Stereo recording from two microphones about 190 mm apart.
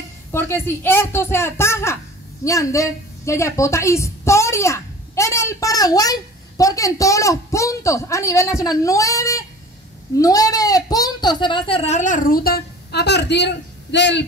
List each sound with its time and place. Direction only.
0.3 s a woman's voice: 10° left (ahead or behind); by 14.2 s 65° left (ahead or behind)